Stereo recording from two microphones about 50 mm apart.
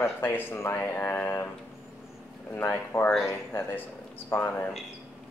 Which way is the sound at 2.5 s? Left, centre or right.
Left.